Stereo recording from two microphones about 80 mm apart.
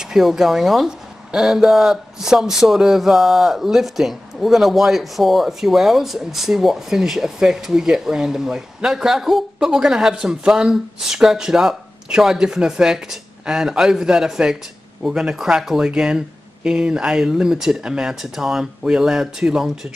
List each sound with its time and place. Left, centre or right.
0.0 s speech: centre